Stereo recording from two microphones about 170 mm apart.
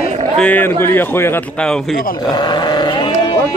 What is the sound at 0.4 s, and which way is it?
Speech, 10° left (ahead or behind).